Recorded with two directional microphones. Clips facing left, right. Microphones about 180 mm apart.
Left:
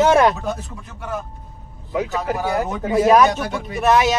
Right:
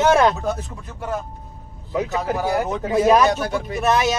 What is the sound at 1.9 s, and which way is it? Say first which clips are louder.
Speech: even; centre (ahead or behind).